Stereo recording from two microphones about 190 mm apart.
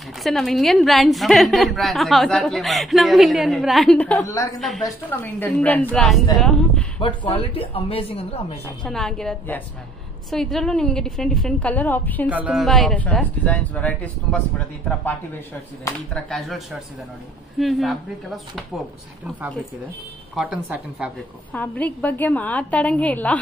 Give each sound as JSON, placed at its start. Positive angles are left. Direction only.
{"t": 0.2, "sound": "a woman's voice", "side_deg": 0}
{"t": 4.6, "sound": "a woman's voice", "side_deg": 0}
{"t": 4.8, "sound": "speech", "side_deg": 10}
{"t": 7.0, "sound": "speech", "side_deg": 30}
{"t": 8.6, "sound": "a woman's voice", "side_deg": 5}
{"t": 12.3, "sound": "speech", "side_deg": -5}
{"t": 16.1, "sound": "a woman's voice", "side_deg": 0}
{"t": 20.3, "sound": "a woman's voice", "side_deg": -5}
{"t": 21.5, "sound": "speech", "side_deg": 10}